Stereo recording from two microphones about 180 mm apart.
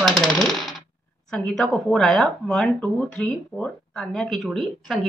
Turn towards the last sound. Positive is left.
turn(degrees=0)  # may be behind; listen again after turning